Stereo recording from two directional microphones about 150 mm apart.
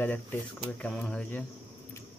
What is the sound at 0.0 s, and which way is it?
Speech, 10° left (ahead or behind).